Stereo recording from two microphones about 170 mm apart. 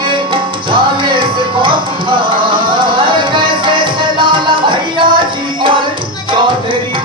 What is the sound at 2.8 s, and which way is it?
Music, 30° right (ahead or behind).